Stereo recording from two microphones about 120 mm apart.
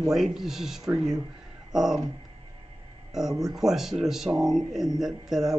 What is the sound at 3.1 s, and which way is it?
Speech, centre (ahead or behind).